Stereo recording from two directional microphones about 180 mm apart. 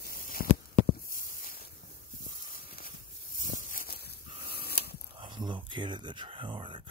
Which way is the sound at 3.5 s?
50° left (ahead or behind).